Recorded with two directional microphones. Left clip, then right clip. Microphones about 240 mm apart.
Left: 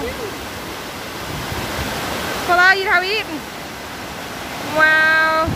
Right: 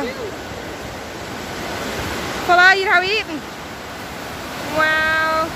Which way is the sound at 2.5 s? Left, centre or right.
Centre.